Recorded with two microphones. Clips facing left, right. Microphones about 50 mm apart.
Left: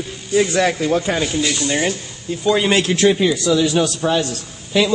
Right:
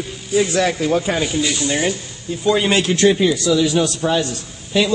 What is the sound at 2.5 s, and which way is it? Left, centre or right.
Speech, centre.